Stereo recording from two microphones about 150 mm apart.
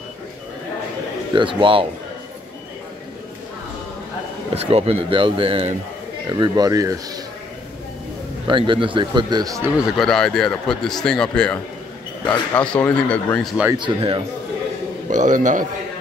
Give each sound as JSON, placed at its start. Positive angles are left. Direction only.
{"t": 1.3, "sound": "speech", "side_deg": -35}
{"t": 4.6, "sound": "speech", "side_deg": -40}
{"t": 6.2, "sound": "speech", "side_deg": -30}
{"t": 8.5, "sound": "speech", "side_deg": -35}
{"t": 9.8, "sound": "a man's voice", "side_deg": 0}
{"t": 13.4, "sound": "speech", "side_deg": 0}
{"t": 13.7, "sound": "speech", "side_deg": -35}
{"t": 15.0, "sound": "a man's voice", "side_deg": -60}